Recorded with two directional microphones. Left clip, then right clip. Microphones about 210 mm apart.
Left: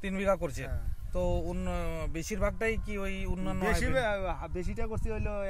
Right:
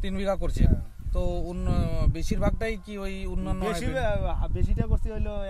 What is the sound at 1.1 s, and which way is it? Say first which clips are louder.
Speech: even; 5° right (ahead or behind).